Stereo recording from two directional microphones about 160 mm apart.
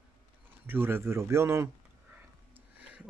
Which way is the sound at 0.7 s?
15° right (ahead or behind).